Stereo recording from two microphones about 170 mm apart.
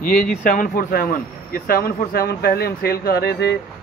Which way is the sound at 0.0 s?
55° left (ahead or behind).